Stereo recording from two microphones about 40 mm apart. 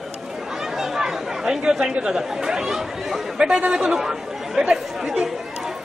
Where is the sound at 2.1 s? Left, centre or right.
Centre.